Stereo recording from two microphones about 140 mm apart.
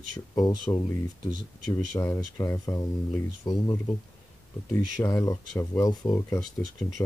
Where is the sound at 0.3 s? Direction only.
25° left (ahead or behind).